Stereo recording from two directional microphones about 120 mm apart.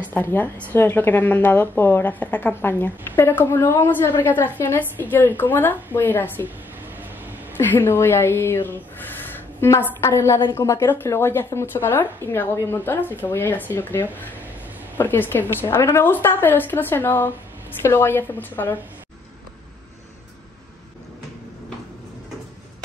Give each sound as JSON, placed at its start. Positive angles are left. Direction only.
{"t": 0.0, "sound": "a woman's voice", "side_deg": 15}
{"t": 7.5, "sound": "a woman's voice", "side_deg": 15}